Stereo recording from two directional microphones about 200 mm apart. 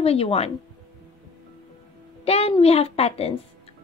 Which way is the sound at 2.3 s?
30° left (ahead or behind).